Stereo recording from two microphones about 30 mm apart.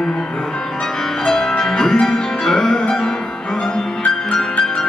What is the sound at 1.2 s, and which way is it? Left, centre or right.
Music, centre.